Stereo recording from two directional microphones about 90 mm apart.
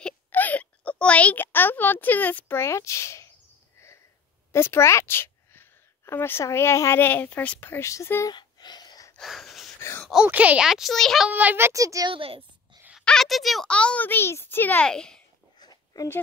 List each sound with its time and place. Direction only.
0.3 s speech: 20° left (ahead or behind)
4.5 s a woman's voice: 30° left (ahead or behind)
8.3 s a sound: 50° left (ahead or behind)
9.2 s a sound: centre (ahead or behind)
9.8 s groan: 30° left (ahead or behind)
10.2 s speech: 15° right (ahead or behind)
10.7 s a child's voice: centre (ahead or behind)
11.2 s a child's voice: 20° right (ahead or behind)
11.7 s a woman's voice: 40° right (ahead or behind)
12.1 s a woman's voice: 80° right
13.0 s speech: 5° left (ahead or behind)
13.7 s a child's voice: 10° left (ahead or behind)
14.9 s a child's voice: 10° left (ahead or behind)
15.6 s a sound: 45° left (ahead or behind)